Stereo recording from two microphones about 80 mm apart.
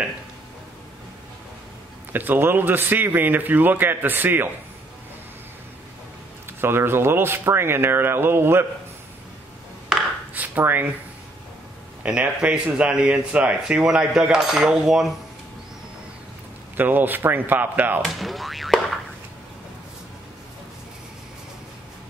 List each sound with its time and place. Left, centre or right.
2.1 s a man's voice: right
6.6 s a man's voice: right
10.3 s a sound: right
12.0 s speech: centre
16.7 s a man's voice: right
18.0 s speech: centre